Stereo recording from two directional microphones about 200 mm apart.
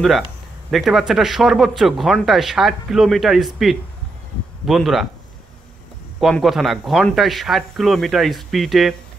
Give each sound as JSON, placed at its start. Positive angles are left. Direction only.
{"t": 0.7, "sound": "speech", "side_deg": 0}
{"t": 6.1, "sound": "speech", "side_deg": 0}